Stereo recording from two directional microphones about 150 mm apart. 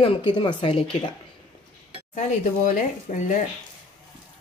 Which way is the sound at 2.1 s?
55° left (ahead or behind).